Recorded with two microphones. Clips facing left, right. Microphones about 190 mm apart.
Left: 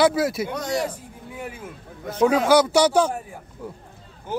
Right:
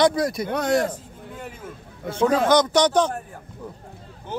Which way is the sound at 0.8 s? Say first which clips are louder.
Right 2 dB; 10° left (ahead or behind).